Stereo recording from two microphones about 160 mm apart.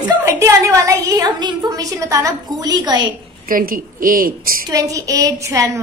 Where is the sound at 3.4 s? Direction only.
60° right (ahead or behind).